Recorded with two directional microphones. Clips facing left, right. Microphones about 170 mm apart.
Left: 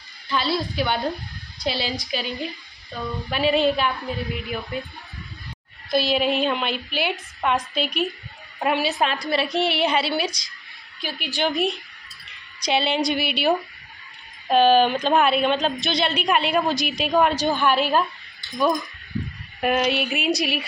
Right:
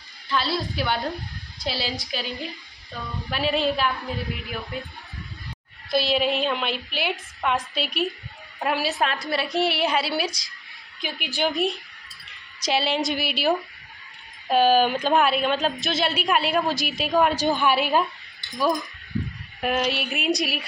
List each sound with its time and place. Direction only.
0.3 s a woman's voice: centre (ahead or behind)
5.9 s a woman's voice: centre (ahead or behind)
11.0 s a woman's voice: 15° right (ahead or behind)
11.4 s a woman's voice: centre (ahead or behind)
17.6 s a woman's voice: 10° right (ahead or behind)
19.6 s a woman's voice: centre (ahead or behind)